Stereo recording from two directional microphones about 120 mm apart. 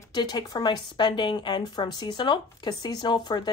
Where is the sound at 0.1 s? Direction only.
35° left (ahead or behind).